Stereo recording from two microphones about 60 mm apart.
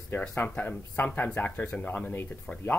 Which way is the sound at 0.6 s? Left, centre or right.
Left.